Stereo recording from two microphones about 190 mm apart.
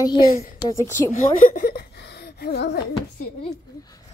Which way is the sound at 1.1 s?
45° left (ahead or behind).